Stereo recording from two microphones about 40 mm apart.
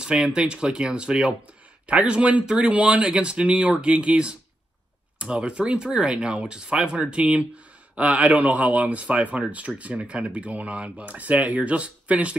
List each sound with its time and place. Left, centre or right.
0.0 s speech: right